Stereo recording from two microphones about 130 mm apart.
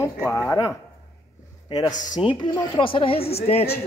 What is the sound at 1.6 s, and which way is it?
Speech, 40° left (ahead or behind).